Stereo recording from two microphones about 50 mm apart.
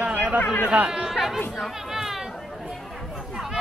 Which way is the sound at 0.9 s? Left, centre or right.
Centre.